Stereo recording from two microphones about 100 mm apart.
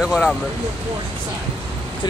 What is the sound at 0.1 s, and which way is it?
Speech, 5° left (ahead or behind).